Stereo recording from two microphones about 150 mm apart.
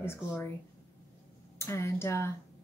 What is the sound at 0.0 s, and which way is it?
Speech, 15° left (ahead or behind).